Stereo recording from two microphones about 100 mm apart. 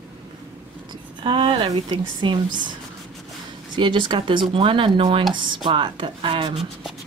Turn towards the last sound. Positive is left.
turn(degrees=-60)  # may be behind; listen again after turning